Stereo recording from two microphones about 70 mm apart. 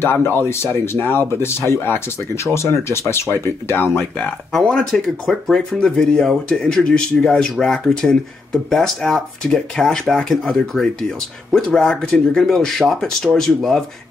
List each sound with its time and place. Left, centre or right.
0.0 s speech: left
4.5 s speech: centre